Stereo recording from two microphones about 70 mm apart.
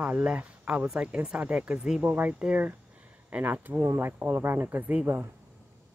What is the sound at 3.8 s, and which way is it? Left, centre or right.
Speech, right.